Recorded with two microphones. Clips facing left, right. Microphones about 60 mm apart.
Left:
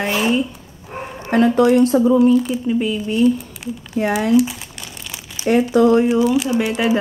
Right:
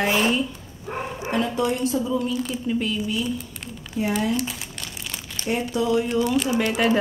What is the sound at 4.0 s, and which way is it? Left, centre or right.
Speech, left.